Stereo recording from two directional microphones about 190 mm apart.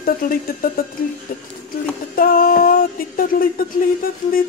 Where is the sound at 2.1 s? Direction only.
50° left (ahead or behind).